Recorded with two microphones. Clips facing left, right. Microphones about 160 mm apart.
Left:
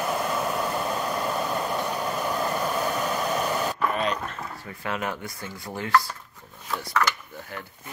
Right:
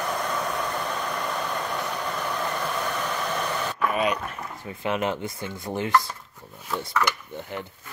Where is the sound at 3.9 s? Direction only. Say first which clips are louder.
Right 2 dB; 10° right (ahead or behind).